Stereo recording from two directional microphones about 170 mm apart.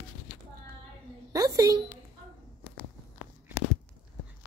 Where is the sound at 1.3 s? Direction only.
20° right (ahead or behind).